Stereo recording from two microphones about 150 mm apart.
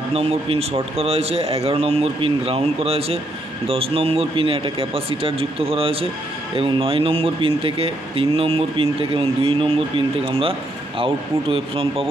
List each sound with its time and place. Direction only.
0.1 s speech: 40° right (ahead or behind)